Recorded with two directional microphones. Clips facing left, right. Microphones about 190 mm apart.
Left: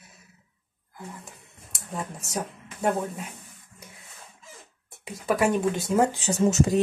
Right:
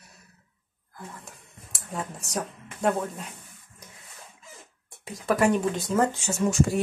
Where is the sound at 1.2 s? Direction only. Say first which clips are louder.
Even; centre (ahead or behind).